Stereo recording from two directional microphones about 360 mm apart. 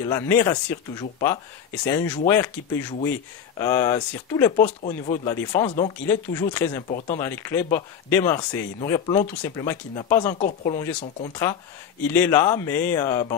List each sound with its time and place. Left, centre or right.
0.0 s speech: centre
4.8 s speech: centre
5.2 s speech: centre
10.4 s speech: left
10.8 s speech: centre